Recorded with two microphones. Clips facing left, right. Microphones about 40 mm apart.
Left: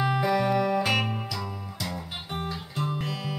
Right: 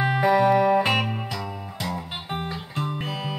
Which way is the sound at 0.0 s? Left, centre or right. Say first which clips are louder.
Right 5 dB; right.